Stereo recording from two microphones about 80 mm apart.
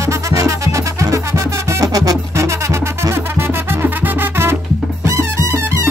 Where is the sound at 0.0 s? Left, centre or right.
Right.